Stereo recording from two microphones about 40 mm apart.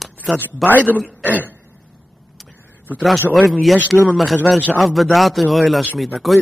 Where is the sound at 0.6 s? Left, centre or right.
Centre.